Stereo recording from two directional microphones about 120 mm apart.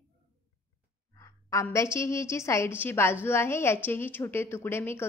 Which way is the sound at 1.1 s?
30° left (ahead or behind).